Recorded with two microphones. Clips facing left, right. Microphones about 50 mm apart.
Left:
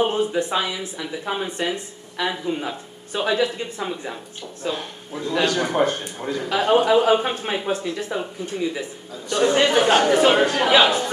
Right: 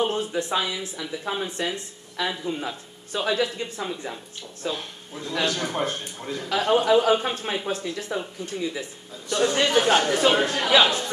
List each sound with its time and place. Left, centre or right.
0.0 s a man's voice: left
9.3 s a man's voice: left